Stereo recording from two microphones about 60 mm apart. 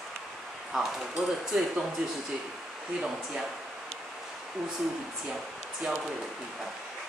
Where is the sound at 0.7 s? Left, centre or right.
Centre.